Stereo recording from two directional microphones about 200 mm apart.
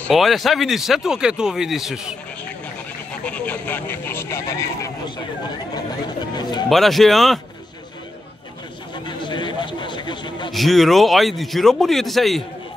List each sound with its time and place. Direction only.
0.0 s speech: centre (ahead or behind); by 5.1 s 15° left (ahead or behind)
6.7 s speech: centre (ahead or behind)
9.0 s chatter: 25° left (ahead or behind)
10.5 s speech: centre (ahead or behind)